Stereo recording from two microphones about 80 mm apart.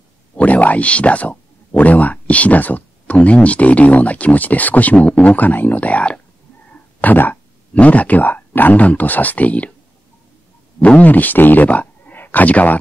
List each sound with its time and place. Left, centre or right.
0.4 s speech: centre
10.8 s speech: centre